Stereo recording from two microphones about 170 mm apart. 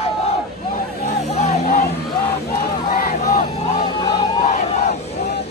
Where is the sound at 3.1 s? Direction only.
45° left (ahead or behind).